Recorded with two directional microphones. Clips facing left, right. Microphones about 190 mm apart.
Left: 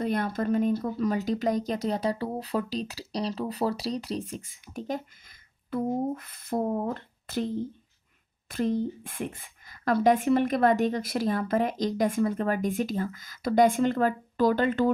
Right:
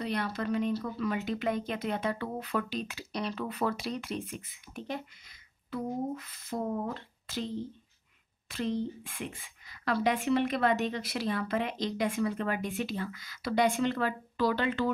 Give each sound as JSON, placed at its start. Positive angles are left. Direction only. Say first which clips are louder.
{"t": 0.0, "sound": "speech", "louder": "left 5 dB", "side_deg": 50}
{"t": 5.7, "sound": "speech", "louder": "left 5 dB", "side_deg": 50}
{"t": 6.6, "sound": "speech", "louder": "left 4 dB", "side_deg": 40}